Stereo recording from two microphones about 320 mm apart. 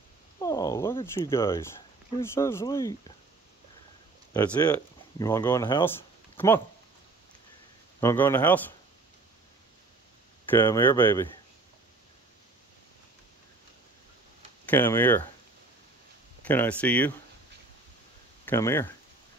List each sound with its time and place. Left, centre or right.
0.4 s speech: centre
4.3 s speech: centre
8.0 s speech: centre
10.5 s speech: centre
14.7 s speech: centre
16.4 s speech: centre
18.4 s speech: centre